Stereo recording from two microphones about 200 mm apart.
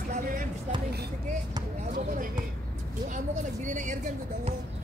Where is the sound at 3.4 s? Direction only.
40° right (ahead or behind).